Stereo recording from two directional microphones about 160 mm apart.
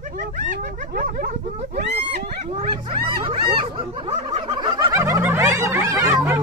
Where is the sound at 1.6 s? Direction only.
45° right (ahead or behind).